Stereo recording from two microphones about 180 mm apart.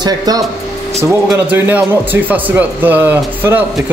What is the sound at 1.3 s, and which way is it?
Speech, 10° right (ahead or behind).